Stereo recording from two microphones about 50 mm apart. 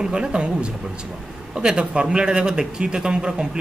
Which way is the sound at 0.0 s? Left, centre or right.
Centre.